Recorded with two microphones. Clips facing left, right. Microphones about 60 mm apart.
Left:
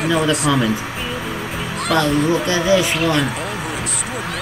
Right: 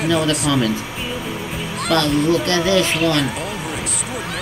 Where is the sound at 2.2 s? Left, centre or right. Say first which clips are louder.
Left 1 dB; centre.